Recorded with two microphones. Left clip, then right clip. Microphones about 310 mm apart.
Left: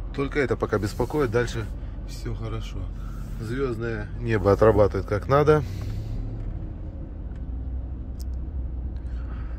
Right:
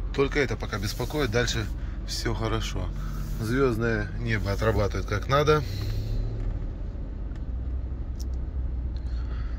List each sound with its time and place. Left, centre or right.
0.1 s speech: centre
2.0 s speech: centre
3.4 s speech: right
4.3 s speech: centre